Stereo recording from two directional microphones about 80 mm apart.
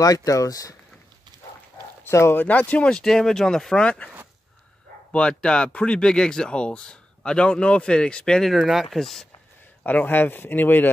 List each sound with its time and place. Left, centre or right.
0.0 s speech: left
2.0 s speech: left
2.4 s speech: centre
5.1 s speech: centre
9.8 s speech: left